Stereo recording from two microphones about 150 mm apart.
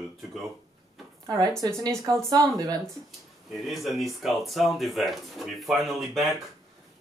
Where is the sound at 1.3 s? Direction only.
25° right (ahead or behind).